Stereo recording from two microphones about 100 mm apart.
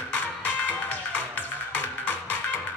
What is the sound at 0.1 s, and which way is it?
Music, 15° left (ahead or behind).